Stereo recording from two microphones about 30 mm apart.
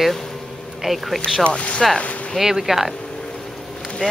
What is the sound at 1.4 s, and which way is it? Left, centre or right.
Speech, left.